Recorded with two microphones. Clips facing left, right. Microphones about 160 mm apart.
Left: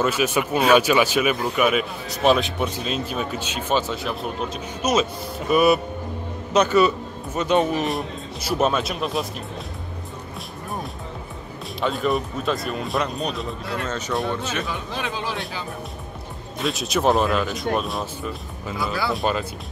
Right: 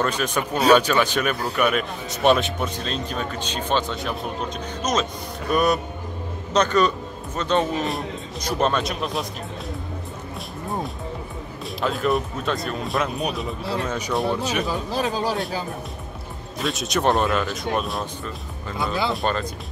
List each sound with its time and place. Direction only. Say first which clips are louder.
0.0 s a man's voice: left 2 dB; 5° left (ahead or behind)
11.8 s speech: even; centre (ahead or behind)
14.7 s speech: right 4 dB; 35° right (ahead or behind)
16.6 s speech: left 1 dB; centre (ahead or behind)